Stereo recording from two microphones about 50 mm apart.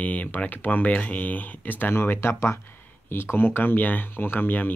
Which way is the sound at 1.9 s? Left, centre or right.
Left.